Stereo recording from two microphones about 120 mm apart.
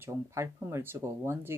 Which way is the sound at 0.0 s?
25° right (ahead or behind).